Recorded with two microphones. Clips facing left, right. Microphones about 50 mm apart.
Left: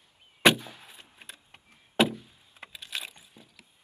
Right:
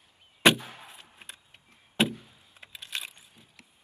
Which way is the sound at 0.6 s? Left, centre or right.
Right.